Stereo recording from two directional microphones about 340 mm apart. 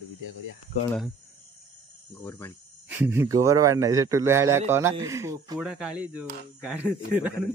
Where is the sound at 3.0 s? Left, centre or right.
Centre.